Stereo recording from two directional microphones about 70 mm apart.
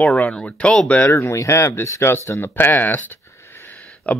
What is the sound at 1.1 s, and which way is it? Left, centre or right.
Speech, left.